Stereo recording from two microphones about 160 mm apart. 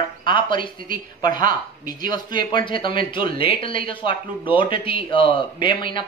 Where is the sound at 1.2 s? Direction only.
25° left (ahead or behind).